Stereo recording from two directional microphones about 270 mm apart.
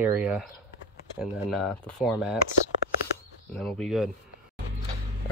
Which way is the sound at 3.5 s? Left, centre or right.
Centre.